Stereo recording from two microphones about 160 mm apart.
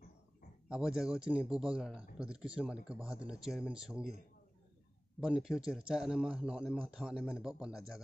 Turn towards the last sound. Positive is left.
turn(degrees=-5)  # may be behind; listen again after turning